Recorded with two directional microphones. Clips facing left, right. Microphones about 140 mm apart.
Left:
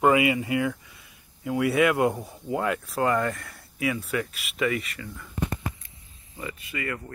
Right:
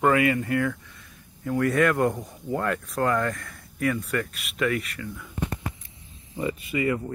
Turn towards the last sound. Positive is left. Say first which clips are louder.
# right 8 dB
turn(degrees=-15)  # may be behind; listen again after turning